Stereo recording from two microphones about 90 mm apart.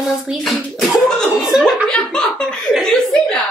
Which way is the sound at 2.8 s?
5° left (ahead or behind).